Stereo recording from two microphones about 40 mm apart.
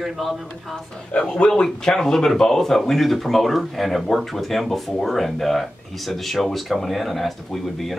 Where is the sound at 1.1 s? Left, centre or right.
Left.